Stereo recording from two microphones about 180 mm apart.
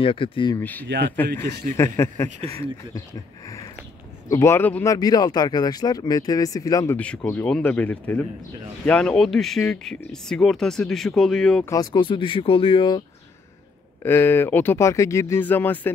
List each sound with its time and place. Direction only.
0.0 s speech: 30° left (ahead or behind)
0.6 s speech: 10° left (ahead or behind)
1.3 s a man's voice: 55° right (ahead or behind)
1.8 s speech: 15° left (ahead or behind)
4.3 s speech: 15° left (ahead or behind)
4.9 s speech: 20° left (ahead or behind)
7.2 s speech: 10° left (ahead or behind)
11.7 s speech: 20° left (ahead or behind)
14.0 s speech: 10° left (ahead or behind)